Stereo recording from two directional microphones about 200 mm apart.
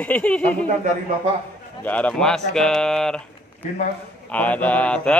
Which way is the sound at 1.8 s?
5° left (ahead or behind).